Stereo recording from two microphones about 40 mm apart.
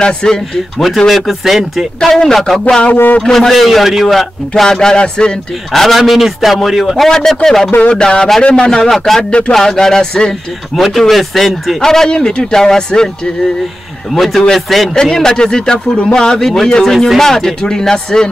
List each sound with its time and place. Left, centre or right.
0.0 s a man's voice: left
0.7 s a man's voice: centre
2.0 s speech: centre
2.3 s a man's voice: centre
2.9 s speech: left
3.2 s a man's voice: centre
4.6 s a man's voice: centre
5.7 s a man's voice: centre
8.9 s speech: centre
10.8 s a man's voice: centre
11.8 s speech: centre
14.1 s a man's voice: centre
15.1 s speech: centre